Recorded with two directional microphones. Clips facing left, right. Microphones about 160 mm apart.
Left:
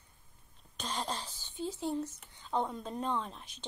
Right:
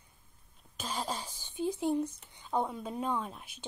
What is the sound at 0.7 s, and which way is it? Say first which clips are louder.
Speech: right 1 dB; 5° right (ahead or behind).